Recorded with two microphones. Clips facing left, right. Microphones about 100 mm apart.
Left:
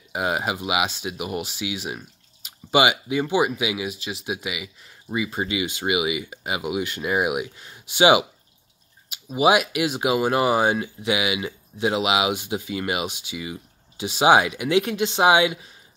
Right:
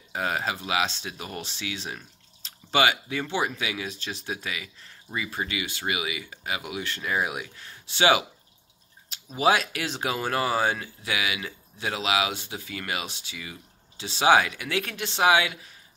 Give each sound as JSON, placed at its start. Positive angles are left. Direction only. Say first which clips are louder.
{"t": 0.1, "sound": "speech", "louder": "left 4 dB", "side_deg": 15}